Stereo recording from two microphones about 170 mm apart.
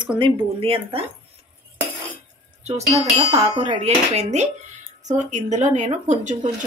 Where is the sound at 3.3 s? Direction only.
40° right (ahead or behind).